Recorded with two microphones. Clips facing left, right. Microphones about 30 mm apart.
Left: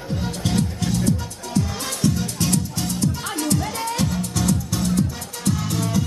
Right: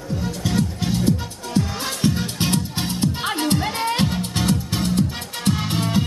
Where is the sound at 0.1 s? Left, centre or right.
Centre.